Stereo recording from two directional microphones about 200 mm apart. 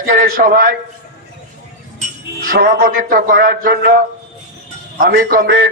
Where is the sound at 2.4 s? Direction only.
45° right (ahead or behind).